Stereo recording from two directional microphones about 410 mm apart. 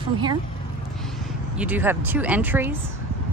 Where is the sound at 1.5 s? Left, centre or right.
Centre.